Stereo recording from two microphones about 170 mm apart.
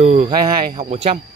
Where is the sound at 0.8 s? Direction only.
35° right (ahead or behind).